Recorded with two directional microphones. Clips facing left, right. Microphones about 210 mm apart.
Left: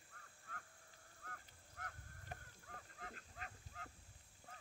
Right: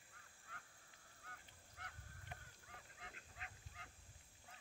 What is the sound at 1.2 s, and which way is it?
Goose, 50° left (ahead or behind).